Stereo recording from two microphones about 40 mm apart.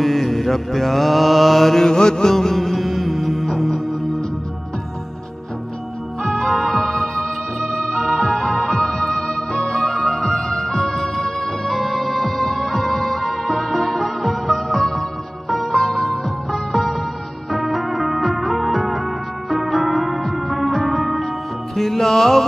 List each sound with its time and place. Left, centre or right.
0.0 s mantra: centre
1.9 s music: centre
6.2 s music: centre
7.8 s music: left
8.1 s organ: centre
15.5 s music: centre